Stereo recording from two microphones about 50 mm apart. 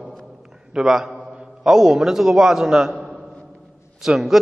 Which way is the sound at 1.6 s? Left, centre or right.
Centre.